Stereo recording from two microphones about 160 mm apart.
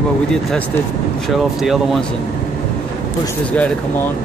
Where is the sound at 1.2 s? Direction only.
Centre (ahead or behind).